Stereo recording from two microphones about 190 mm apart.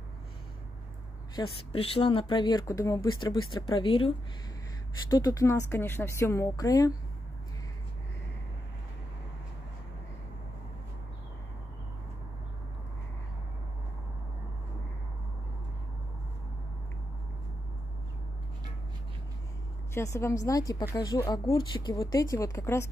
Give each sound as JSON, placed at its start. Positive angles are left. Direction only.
{"t": 1.3, "sound": "speech", "side_deg": 30}
{"t": 3.6, "sound": "speech", "side_deg": 25}
{"t": 5.1, "sound": "a woman's voice", "side_deg": 20}
{"t": 19.9, "sound": "a woman's voice", "side_deg": 15}